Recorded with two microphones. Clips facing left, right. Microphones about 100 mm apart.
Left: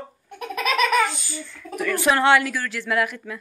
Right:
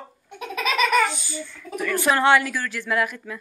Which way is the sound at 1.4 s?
Centre (ahead or behind).